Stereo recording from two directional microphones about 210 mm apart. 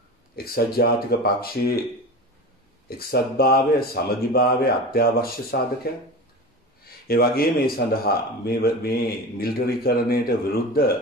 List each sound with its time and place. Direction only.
0.4 s speech: 45° left (ahead or behind)
3.0 s speech: 45° left (ahead or behind)
7.1 s speech: 45° left (ahead or behind)